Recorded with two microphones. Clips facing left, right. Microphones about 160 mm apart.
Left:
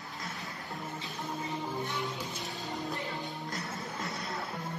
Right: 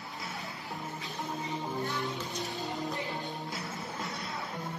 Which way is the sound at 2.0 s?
Centre (ahead or behind).